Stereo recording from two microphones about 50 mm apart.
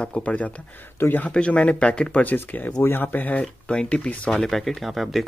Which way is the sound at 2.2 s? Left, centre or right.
Left.